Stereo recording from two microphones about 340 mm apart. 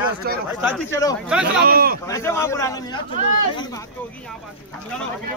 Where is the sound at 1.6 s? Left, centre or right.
Right.